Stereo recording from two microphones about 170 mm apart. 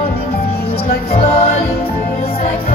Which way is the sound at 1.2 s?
40° left (ahead or behind).